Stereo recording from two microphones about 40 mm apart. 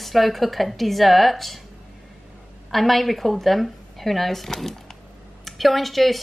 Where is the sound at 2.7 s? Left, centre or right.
Centre.